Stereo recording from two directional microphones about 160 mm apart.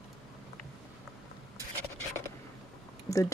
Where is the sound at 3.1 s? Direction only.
20° left (ahead or behind).